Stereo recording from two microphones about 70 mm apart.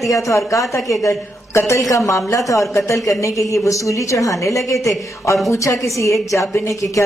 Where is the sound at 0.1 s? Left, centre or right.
Left.